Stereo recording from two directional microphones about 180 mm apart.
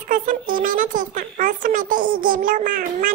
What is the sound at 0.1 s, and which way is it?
Speech, 50° right (ahead or behind).